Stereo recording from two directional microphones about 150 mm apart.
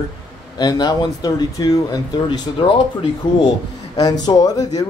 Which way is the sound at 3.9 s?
25° left (ahead or behind).